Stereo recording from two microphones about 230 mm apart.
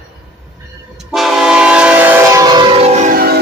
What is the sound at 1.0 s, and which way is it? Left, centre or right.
Train, centre.